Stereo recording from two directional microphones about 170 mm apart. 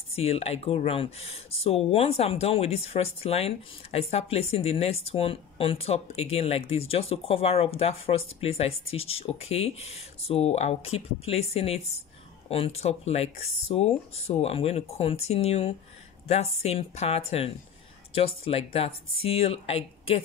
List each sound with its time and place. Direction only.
0.1 s speech: 35° left (ahead or behind)